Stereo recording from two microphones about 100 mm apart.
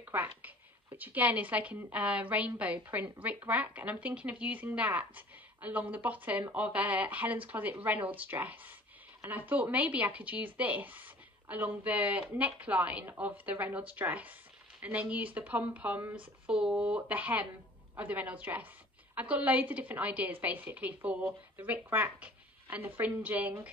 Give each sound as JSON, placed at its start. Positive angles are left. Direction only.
{"t": 0.0, "sound": "speech", "side_deg": -20}